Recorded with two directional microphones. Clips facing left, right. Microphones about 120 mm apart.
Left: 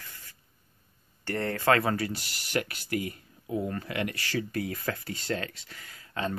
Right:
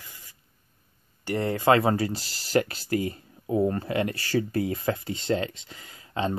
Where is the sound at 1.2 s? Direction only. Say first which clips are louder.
Right 4 dB; 15° right (ahead or behind).